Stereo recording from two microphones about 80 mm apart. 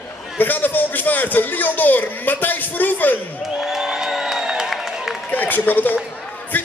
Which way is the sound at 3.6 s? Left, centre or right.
Centre.